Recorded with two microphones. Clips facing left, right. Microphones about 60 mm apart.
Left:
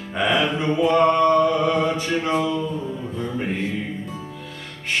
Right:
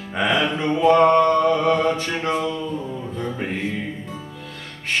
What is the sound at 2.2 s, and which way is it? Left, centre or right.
Speech, centre.